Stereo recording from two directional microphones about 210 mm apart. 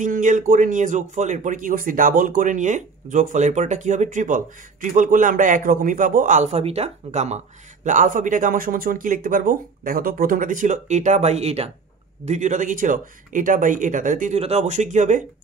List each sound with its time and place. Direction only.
0.0 s a man's voice: 35° right (ahead or behind)